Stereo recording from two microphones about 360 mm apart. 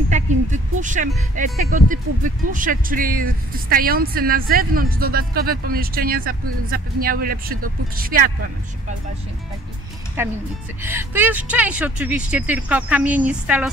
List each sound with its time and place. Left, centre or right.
0.1 s speech: right
10.2 s speech: centre